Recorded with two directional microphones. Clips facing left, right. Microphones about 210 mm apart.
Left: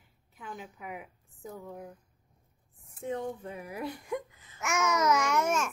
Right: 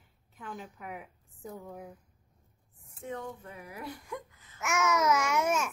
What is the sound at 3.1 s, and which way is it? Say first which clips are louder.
Speech: left 5 dB; 25° left (ahead or behind).